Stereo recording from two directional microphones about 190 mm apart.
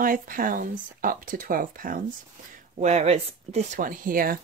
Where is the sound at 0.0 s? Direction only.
45° right (ahead or behind).